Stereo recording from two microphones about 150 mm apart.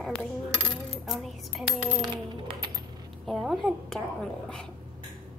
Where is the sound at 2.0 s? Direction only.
30° right (ahead or behind).